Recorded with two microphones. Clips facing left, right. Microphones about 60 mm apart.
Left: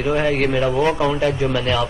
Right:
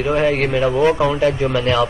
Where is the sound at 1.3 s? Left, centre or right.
Right.